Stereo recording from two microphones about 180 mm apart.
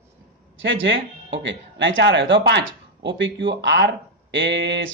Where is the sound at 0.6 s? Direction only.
90° right.